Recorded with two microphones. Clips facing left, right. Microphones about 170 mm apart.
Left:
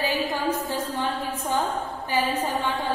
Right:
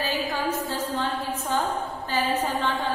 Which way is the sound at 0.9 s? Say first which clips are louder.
Even; 15° left (ahead or behind).